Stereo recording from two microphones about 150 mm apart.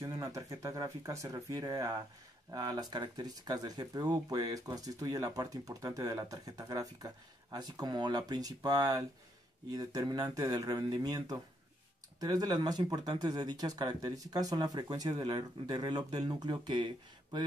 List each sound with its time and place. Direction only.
0.0 s speech: 25° right (ahead or behind)